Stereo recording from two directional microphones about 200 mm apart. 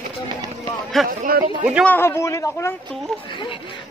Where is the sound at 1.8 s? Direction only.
10° left (ahead or behind).